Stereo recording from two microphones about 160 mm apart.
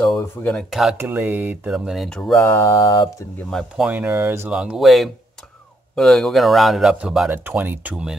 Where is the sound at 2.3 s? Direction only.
20° left (ahead or behind).